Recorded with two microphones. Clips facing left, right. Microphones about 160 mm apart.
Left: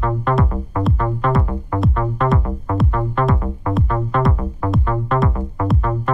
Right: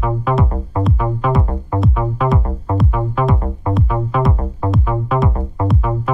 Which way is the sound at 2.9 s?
5° right (ahead or behind).